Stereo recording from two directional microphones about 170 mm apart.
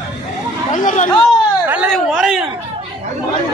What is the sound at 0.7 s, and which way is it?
Chatter, 45° left (ahead or behind).